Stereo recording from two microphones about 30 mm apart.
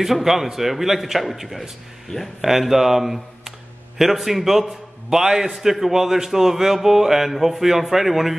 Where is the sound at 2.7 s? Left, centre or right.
Centre.